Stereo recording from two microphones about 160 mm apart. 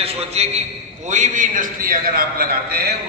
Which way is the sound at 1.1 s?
50° right (ahead or behind).